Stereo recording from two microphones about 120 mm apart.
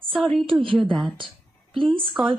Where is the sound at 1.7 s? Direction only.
45° right (ahead or behind).